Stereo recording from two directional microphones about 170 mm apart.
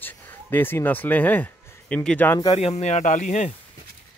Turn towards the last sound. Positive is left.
turn(degrees=45)  # may be behind; listen again after turning